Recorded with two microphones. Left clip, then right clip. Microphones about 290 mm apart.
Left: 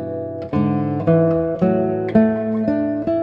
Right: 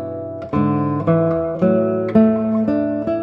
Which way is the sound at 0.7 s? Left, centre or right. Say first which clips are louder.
Left 1 dB; left.